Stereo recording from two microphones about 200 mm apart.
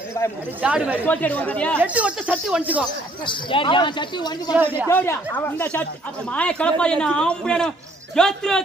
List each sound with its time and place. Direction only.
0.6 s speech: 5° right (ahead or behind)
1.0 s speech: 10° left (ahead or behind)
1.8 s speech: 5° right (ahead or behind)
3.3 s a man's voice: 25° left (ahead or behind)
4.6 s speech: 10° right (ahead or behind)
4.8 s speech: 10° left (ahead or behind)